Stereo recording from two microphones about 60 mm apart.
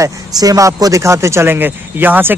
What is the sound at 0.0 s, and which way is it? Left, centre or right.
Speech, right.